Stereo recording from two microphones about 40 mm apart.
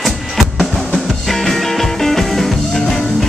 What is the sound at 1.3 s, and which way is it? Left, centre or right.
Music, centre.